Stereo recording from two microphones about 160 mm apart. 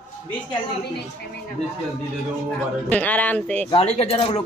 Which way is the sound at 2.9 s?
10° left (ahead or behind).